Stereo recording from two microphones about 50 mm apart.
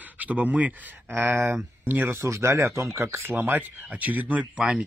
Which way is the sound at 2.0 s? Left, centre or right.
Right.